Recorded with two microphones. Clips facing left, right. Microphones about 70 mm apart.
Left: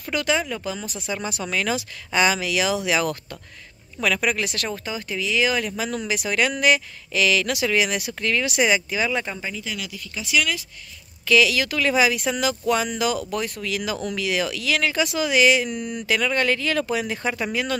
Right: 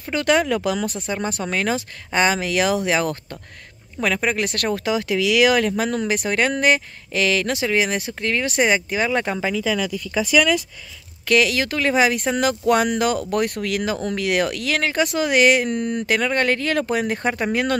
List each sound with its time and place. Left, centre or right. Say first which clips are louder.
0.2 s speech: right 7 dB; right
1.0 s speech: right 3 dB; right
4.5 s speech: right 6 dB; right
4.8 s speech: right 8 dB; right
11.2 s speech: right 1 dB; right